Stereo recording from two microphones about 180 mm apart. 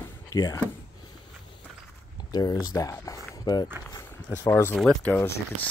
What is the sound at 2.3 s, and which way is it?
Speech, 20° left (ahead or behind).